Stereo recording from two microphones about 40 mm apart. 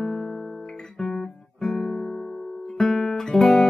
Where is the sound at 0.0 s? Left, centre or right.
Centre.